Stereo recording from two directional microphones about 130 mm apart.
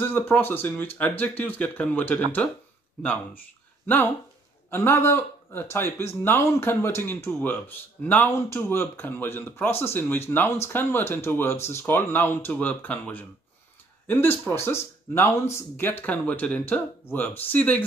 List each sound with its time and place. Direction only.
0.0 s speech: 15° left (ahead or behind)
3.8 s speech: 15° left (ahead or behind)